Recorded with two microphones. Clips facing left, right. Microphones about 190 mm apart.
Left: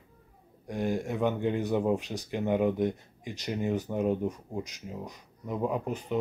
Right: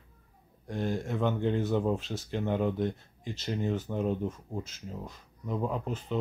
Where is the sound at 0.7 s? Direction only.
15° left (ahead or behind).